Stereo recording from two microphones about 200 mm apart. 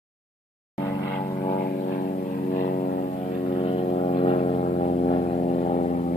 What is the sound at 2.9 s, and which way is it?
Music, 40° left (ahead or behind).